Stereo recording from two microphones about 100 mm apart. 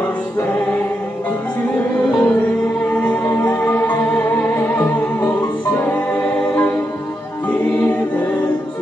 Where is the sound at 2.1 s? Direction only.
20° left (ahead or behind).